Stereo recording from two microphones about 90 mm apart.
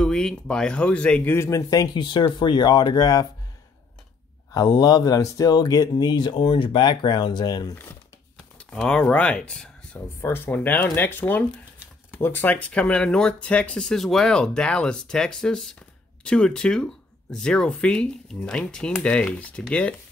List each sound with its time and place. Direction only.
0.0 s speech: 10° left (ahead or behind)
1.3 s speech: 30° left (ahead or behind)
2.0 s speech: 55° left (ahead or behind)
4.7 s speech: 45° left (ahead or behind)
7.7 s speech: 25° left (ahead or behind)
8.5 s speech: 10° left (ahead or behind)
9.9 s speech: 25° left (ahead or behind)